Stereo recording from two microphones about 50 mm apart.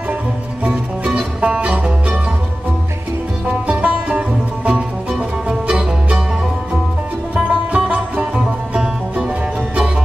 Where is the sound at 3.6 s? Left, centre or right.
Right.